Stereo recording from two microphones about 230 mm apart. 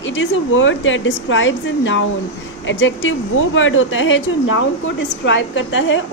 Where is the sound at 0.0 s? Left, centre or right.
Left.